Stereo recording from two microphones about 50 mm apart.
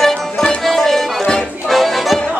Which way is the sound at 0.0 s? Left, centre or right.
Centre.